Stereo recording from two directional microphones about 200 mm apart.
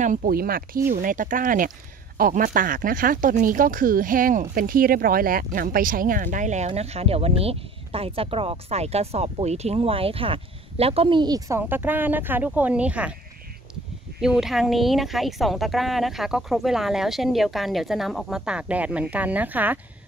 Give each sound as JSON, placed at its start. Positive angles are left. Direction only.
{"t": 0.0, "sound": "speech", "side_deg": -40}
{"t": 14.2, "sound": "a woman's voice", "side_deg": 0}